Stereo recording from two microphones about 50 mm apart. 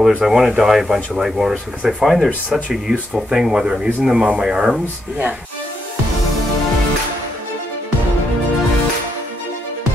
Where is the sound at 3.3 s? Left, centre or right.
Centre.